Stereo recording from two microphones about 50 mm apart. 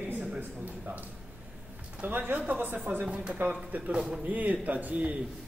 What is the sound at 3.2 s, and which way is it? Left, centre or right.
Speech, right.